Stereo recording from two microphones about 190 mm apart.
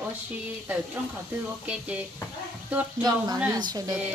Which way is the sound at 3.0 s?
20° right (ahead or behind).